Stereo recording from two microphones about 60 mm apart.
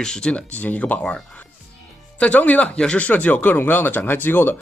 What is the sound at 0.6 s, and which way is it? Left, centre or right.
Speech, left.